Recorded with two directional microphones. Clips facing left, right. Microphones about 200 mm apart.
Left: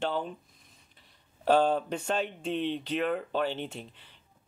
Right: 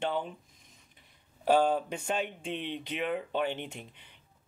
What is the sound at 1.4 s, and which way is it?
Speech, 10° right (ahead or behind).